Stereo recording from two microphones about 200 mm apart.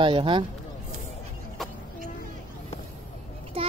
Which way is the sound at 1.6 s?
Centre (ahead or behind).